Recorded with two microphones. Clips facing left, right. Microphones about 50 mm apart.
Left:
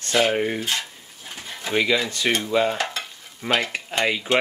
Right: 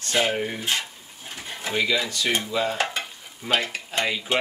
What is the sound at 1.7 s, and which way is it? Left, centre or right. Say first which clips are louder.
Whip: left 3 dB; left.